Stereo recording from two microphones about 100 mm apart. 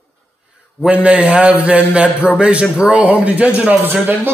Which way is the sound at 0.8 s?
15° right (ahead or behind).